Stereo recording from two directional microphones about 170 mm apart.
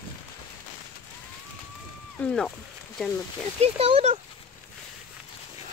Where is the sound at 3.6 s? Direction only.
35° right (ahead or behind).